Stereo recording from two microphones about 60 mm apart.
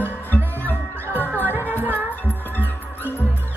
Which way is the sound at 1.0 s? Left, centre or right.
Right.